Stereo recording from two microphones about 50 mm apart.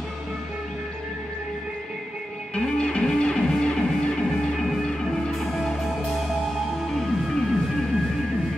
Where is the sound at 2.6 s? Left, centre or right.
Centre.